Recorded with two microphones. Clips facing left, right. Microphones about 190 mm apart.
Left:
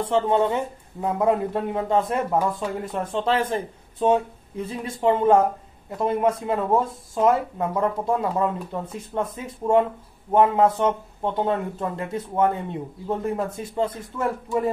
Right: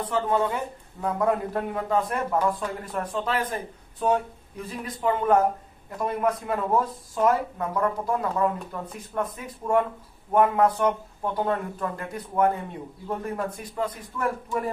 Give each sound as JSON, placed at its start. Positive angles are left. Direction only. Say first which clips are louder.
{"t": 0.0, "sound": "speech", "louder": "left 4 dB", "side_deg": 25}